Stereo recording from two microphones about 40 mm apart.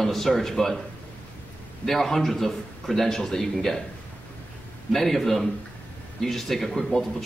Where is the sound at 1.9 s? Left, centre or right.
Centre.